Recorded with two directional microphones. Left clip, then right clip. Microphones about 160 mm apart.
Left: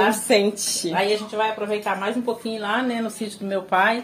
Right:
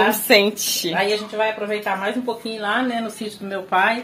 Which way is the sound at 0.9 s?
35° left (ahead or behind).